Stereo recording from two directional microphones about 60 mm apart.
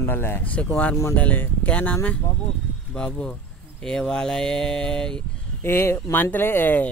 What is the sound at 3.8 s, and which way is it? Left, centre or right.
Speech, centre.